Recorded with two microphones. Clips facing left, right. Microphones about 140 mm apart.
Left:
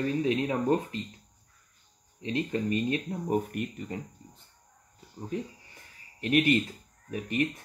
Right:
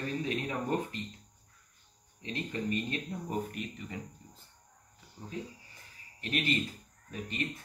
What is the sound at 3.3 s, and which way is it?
Speech, 55° left (ahead or behind).